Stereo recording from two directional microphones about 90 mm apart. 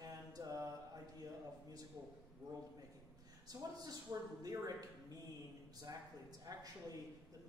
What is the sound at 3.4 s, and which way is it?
A woman's voice, 45° right (ahead or behind).